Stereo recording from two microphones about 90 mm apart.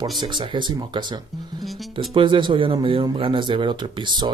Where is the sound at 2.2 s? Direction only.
65° right (ahead or behind).